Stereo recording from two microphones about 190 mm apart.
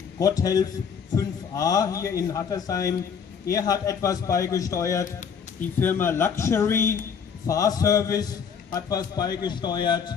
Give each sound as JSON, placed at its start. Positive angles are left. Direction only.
{"t": 0.2, "sound": "a man's voice", "side_deg": 20}